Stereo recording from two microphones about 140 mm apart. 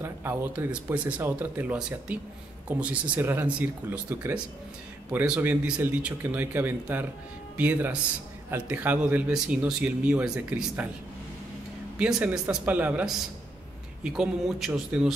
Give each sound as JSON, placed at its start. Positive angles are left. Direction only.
{"t": 0.0, "sound": "speech", "side_deg": -15}
{"t": 12.0, "sound": "a man's voice", "side_deg": -10}